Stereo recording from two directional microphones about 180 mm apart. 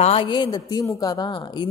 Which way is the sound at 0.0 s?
30° left (ahead or behind).